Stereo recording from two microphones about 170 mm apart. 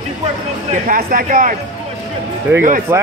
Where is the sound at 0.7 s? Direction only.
55° right (ahead or behind).